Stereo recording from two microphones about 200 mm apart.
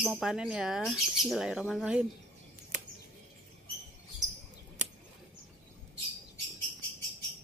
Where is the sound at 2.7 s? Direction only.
40° right (ahead or behind).